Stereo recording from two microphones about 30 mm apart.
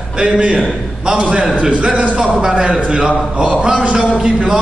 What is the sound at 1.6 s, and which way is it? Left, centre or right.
Speech, right.